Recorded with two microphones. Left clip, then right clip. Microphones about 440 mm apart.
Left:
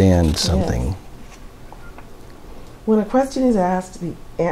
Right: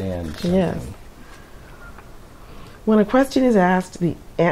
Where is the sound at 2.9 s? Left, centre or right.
Right.